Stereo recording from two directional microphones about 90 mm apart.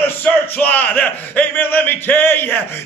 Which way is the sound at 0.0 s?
20° left (ahead or behind).